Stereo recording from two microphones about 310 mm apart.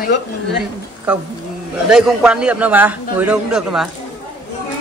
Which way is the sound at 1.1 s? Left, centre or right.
Centre.